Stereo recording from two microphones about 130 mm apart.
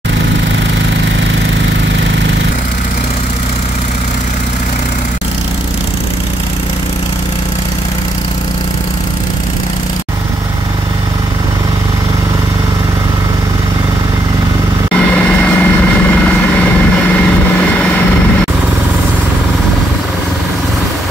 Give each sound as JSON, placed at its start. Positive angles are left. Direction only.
{"t": 15.1, "sound": "vehicle", "side_deg": 10}